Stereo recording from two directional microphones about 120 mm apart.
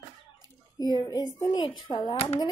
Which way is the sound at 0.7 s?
35° left (ahead or behind).